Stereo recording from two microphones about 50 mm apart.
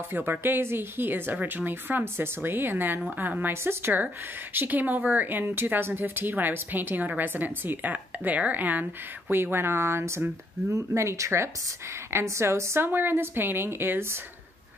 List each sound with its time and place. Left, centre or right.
0.1 s a woman's voice: right
9.3 s a woman's voice: right
11.0 s a woman's voice: right
12.8 s a woman's voice: right